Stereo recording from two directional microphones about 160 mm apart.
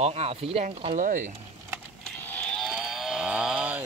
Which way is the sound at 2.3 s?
5° left (ahead or behind).